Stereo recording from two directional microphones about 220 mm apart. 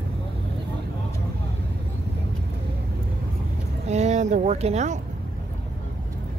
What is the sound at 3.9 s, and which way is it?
Speech, 30° right (ahead or behind).